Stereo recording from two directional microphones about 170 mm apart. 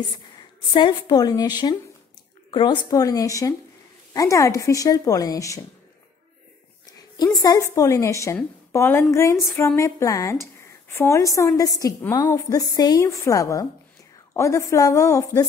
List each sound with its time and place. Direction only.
0.7 s a woman's voice: 25° left (ahead or behind)
6.9 s a woman's voice: 20° left (ahead or behind)